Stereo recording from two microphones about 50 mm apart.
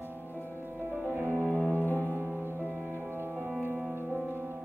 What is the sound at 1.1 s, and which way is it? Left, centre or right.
Music, right.